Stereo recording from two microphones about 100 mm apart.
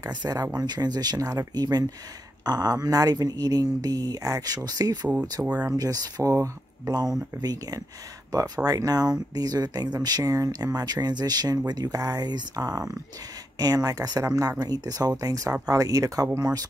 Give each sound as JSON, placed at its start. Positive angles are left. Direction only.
{"t": 0.1, "sound": "speech", "side_deg": -40}